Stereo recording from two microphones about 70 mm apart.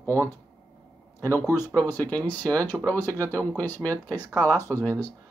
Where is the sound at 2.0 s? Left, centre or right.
Centre.